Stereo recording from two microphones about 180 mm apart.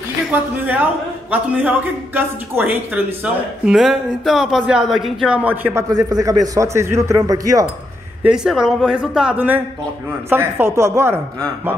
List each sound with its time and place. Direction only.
0.3 s a man's voice: 10° right (ahead or behind)
5.9 s a man's voice: 20° right (ahead or behind)
8.2 s a man's voice: 5° right (ahead or behind)